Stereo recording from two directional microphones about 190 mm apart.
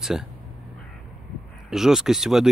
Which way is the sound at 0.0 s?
Centre (ahead or behind).